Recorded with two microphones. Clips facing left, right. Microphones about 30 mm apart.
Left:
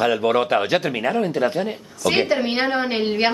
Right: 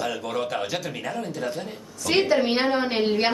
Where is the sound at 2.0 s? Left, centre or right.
Centre.